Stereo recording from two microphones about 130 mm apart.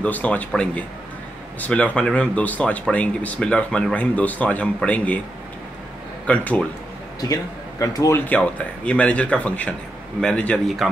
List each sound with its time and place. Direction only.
0.0 s speech: 10° left (ahead or behind)
1.6 s speech: 10° left (ahead or behind)
6.2 s speech: 10° left (ahead or behind)
7.8 s speech: 25° left (ahead or behind)
8.3 s speech: 10° left (ahead or behind)